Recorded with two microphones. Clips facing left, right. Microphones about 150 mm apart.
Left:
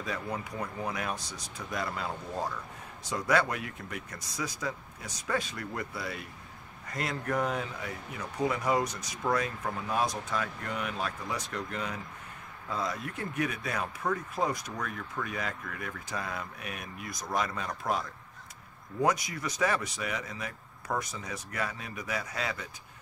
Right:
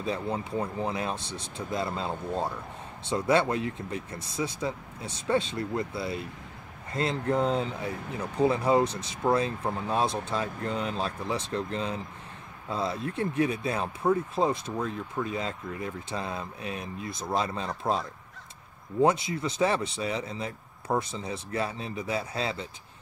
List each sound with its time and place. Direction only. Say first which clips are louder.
0.0 s speech: right 5 dB; 25° right (ahead or behind)